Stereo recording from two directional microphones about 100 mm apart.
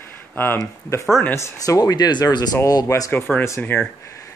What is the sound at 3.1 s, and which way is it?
Speech, 20° left (ahead or behind).